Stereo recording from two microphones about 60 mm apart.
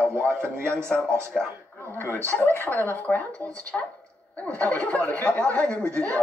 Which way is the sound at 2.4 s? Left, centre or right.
Left.